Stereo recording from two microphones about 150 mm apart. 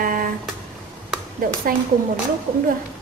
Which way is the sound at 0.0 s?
65° right (ahead or behind).